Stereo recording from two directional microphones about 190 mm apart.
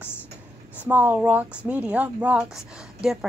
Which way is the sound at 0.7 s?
10° right (ahead or behind).